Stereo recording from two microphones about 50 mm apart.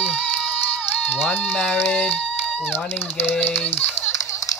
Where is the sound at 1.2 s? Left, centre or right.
Left.